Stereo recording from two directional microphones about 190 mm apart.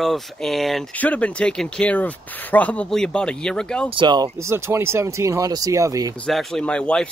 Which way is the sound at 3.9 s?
25° right (ahead or behind).